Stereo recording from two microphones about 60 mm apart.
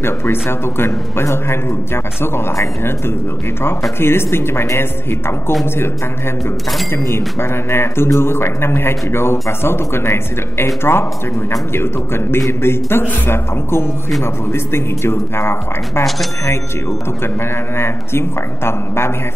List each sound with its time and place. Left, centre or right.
0.0 s speech: left
4.0 s speech: left
7.1 s speech: left
17.7 s speech: left